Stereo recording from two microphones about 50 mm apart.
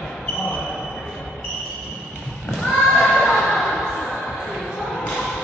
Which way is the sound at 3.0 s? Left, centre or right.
Centre.